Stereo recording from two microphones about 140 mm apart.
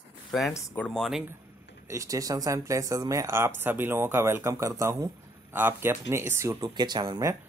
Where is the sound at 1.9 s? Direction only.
25° right (ahead or behind).